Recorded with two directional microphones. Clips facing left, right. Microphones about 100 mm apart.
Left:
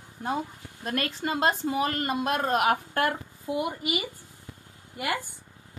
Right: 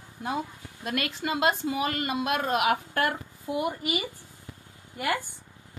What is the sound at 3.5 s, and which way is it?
Speech, 20° left (ahead or behind).